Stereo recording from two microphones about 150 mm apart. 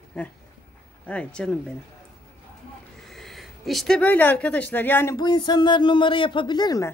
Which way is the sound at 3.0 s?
Centre (ahead or behind).